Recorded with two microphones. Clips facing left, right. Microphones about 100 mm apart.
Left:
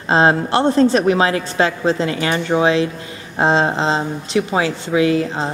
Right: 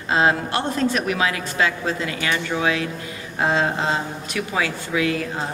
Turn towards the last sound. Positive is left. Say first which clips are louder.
# left 7 dB
turn(degrees=25)  # may be behind; listen again after turning